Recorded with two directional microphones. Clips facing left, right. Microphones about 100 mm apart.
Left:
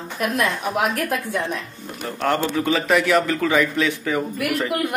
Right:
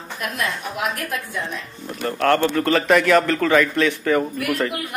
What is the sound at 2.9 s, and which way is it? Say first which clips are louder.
A man's voice: right 3 dB; 15° left (ahead or behind).